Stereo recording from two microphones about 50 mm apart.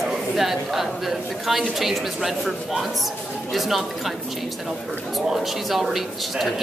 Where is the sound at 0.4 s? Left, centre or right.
Centre.